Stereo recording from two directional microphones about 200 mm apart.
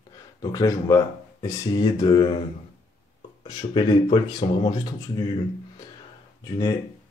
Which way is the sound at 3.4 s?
25° left (ahead or behind).